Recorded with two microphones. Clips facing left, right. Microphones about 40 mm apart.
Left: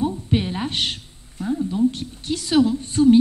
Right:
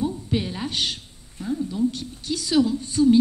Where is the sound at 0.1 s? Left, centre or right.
Left.